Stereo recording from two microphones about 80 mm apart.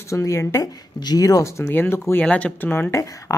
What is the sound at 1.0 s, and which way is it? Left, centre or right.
Speech, left.